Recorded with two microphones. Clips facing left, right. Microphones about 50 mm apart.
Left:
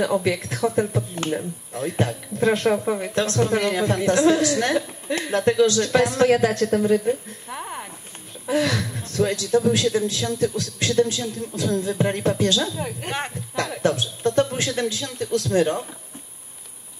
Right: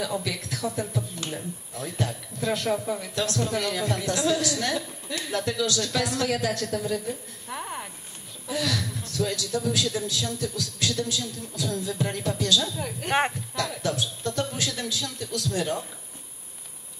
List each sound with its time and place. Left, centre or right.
0.0 s speech: left
7.4 s a sound: centre
8.5 s speech: left
12.7 s speech: centre
13.8 s speech: left